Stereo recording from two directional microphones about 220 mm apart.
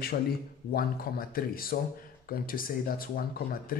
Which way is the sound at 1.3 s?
40° left (ahead or behind).